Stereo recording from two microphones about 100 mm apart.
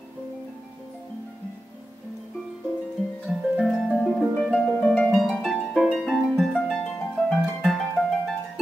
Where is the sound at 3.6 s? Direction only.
Centre (ahead or behind).